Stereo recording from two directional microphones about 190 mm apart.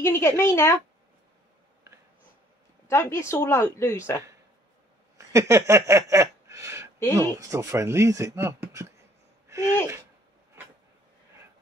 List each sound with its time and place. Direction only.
0.0 s speech: 15° left (ahead or behind)
2.9 s speech: 15° left (ahead or behind)
5.1 s a sound: 15° right (ahead or behind)
7.2 s speech: 15° right (ahead or behind)